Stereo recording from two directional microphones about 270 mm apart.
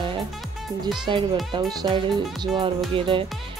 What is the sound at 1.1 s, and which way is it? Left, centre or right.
Speech, centre.